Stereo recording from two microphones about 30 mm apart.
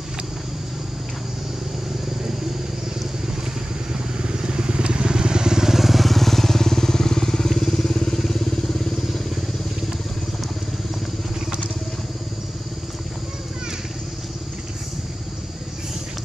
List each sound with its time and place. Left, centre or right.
4.2 s vehicle: right; by 9.0 s centre